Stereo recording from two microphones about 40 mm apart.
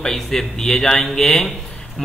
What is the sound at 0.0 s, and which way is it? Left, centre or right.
A man's voice, centre.